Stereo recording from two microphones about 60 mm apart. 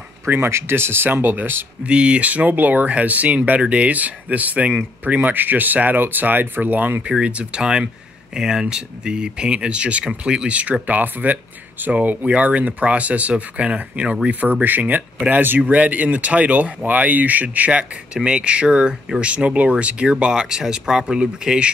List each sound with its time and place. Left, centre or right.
0.3 s speech: right
1.9 s speech: centre
7.1 s speech: centre